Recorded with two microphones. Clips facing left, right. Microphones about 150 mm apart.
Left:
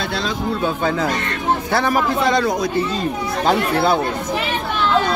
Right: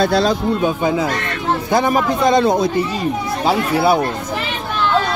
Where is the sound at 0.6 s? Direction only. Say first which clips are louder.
Right 3 dB; 15° right (ahead or behind).